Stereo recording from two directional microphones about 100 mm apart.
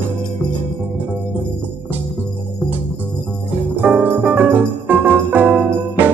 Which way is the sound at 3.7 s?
15° right (ahead or behind).